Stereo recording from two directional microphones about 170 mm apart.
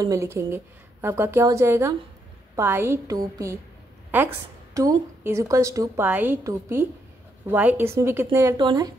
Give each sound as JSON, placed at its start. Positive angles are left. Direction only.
{"t": 0.0, "sound": "a woman's voice", "side_deg": -15}